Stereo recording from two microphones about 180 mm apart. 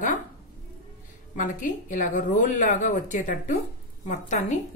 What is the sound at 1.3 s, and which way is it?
Speech, 45° left (ahead or behind).